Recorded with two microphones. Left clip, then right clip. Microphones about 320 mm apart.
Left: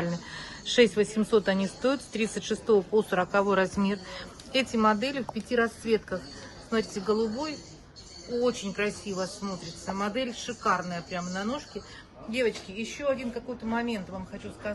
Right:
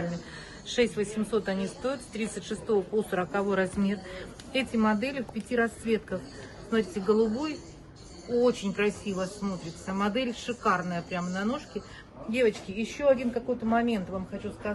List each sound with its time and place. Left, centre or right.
0.7 s speech: left; by 7.5 s centre
8.7 s speech: centre